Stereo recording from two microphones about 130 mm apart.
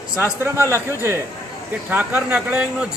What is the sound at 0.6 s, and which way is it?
Speech, 20° left (ahead or behind).